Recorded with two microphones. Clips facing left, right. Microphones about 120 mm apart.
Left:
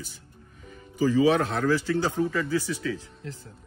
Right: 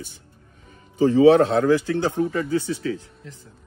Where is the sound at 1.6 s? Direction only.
55° right (ahead or behind).